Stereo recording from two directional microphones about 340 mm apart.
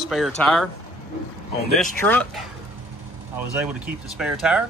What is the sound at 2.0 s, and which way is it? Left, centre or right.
Speech, centre.